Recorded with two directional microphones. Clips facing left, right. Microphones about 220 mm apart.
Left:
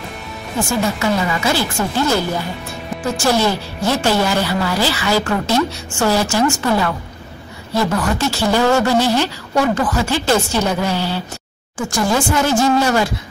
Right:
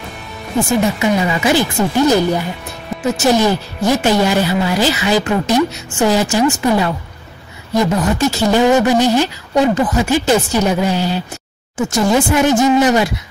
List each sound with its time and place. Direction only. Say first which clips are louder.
0.7 s speech: right 3 dB; 20° right (ahead or behind)